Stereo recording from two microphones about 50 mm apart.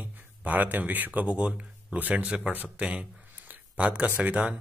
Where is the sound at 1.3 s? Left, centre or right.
Right.